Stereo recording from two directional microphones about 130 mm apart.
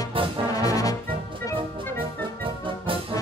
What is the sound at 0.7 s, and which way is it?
Brass instrument, 25° left (ahead or behind).